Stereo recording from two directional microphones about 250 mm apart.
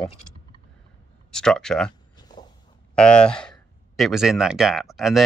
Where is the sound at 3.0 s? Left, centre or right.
Centre.